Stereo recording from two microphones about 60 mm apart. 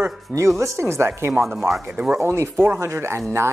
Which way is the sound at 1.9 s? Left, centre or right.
Right.